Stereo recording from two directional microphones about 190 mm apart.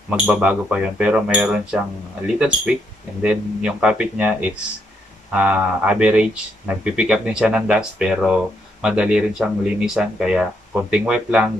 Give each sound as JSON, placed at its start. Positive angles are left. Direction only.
{"t": 0.3, "sound": "speech", "side_deg": -5}